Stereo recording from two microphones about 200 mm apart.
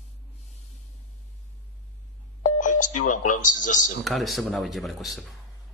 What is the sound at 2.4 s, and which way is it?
Telephone dialing, 40° left (ahead or behind).